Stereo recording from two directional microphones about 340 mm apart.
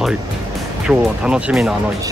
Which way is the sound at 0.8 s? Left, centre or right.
Centre.